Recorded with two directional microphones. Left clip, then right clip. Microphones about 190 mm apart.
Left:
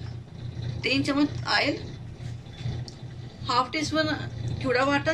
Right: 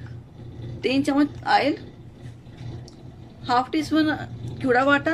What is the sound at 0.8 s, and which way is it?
A woman's voice, 55° right (ahead or behind).